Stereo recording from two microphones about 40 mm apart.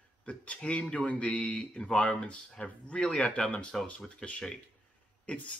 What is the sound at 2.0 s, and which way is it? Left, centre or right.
Speech, left.